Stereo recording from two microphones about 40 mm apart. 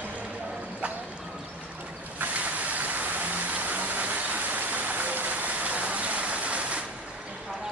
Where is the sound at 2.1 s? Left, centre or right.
Right.